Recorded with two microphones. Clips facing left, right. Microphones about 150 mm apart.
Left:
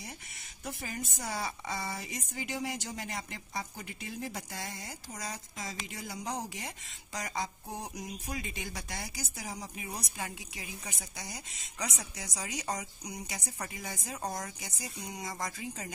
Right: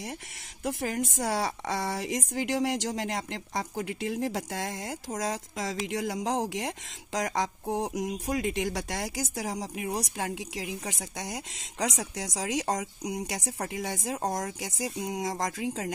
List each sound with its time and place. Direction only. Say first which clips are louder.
0.7 s a woman's voice: right 9 dB; 80° right
14.1 s speech: right 6 dB; 45° right (ahead or behind)
14.6 s speech: right 10 dB; 90° right